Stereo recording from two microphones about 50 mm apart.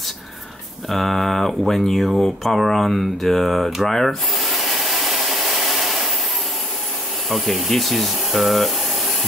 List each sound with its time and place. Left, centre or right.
0.8 s speech: centre
2.2 s a sound: centre
7.2 s speech: centre